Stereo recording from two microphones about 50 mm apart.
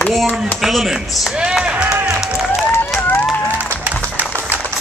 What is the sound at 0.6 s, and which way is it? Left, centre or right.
Speech, centre.